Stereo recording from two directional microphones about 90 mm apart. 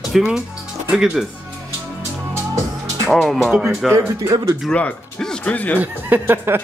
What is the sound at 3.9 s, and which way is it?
Speech, 35° right (ahead or behind).